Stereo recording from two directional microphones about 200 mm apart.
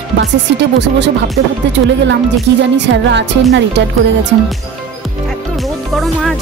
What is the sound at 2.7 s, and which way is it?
Speech, 60° right (ahead or behind).